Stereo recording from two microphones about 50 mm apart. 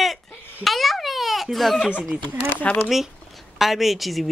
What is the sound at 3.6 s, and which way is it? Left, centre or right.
Speech, centre.